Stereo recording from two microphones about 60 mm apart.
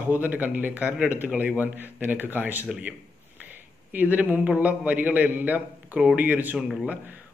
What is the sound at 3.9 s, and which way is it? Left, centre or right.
Speech, right.